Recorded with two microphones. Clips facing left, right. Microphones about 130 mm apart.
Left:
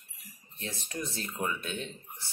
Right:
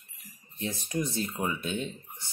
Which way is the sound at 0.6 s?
15° right (ahead or behind).